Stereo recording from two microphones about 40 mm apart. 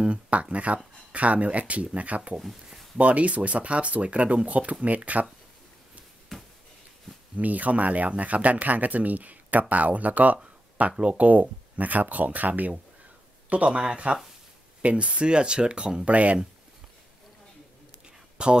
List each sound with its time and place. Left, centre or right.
0.0 s speech: right
2.3 s speech: centre
3.0 s speech: right
6.3 s a sound: centre
7.3 s speech: right
10.4 s speech: right
13.7 s speech: right
18.4 s speech: right